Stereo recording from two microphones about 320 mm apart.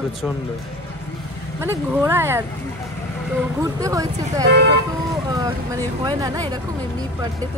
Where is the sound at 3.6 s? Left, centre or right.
Centre.